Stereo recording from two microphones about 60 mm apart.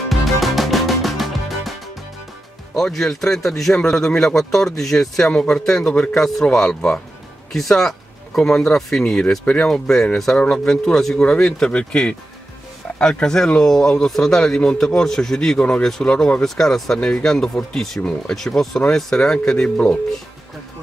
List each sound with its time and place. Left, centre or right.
0.1 s music: centre
2.7 s a man's voice: centre; by 9.7 s left
9.7 s a man's voice: centre